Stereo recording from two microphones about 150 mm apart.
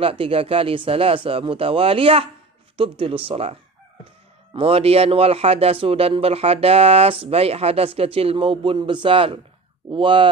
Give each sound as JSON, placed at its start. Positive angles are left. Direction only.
{"t": 0.0, "sound": "a man's voice", "side_deg": -35}
{"t": 4.6, "sound": "a man's voice", "side_deg": -40}